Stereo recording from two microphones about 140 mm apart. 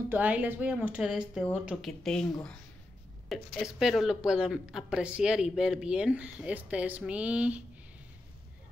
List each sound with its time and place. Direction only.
0.1 s a woman's voice: 10° right (ahead or behind)